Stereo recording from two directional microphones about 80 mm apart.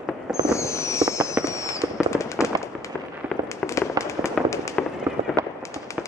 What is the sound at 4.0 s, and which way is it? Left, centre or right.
Fireworks, right.